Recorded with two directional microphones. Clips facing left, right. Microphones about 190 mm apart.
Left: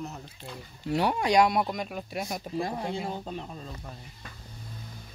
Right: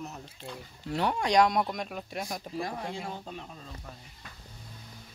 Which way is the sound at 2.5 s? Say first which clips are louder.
Left 5 dB; 25° left (ahead or behind).